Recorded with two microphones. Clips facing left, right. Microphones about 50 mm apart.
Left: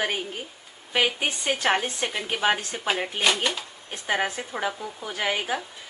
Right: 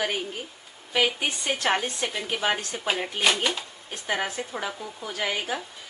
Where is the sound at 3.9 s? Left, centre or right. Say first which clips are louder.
Left 3 dB; centre.